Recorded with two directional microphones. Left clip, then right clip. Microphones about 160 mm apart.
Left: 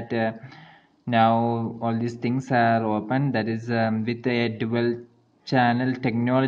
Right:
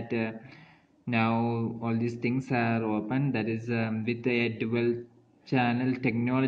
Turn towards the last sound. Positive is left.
turn(degrees=45)  # may be behind; listen again after turning